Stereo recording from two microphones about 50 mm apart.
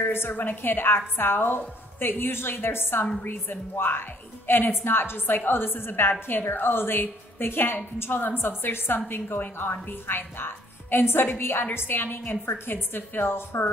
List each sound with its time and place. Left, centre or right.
0.0 s a woman's voice: left
0.3 s a woman's voice: left